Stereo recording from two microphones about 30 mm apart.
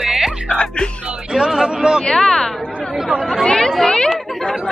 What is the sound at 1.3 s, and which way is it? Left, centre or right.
Speech, right.